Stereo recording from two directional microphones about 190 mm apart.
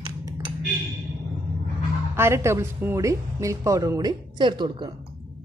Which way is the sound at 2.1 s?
15° right (ahead or behind).